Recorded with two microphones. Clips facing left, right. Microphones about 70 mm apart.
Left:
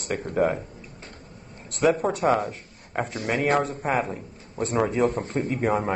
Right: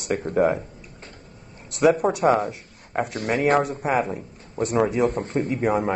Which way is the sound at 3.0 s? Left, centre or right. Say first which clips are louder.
Right 3 dB; right.